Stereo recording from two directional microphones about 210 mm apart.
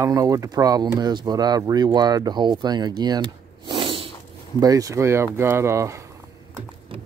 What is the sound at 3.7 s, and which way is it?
Snort, 25° right (ahead or behind).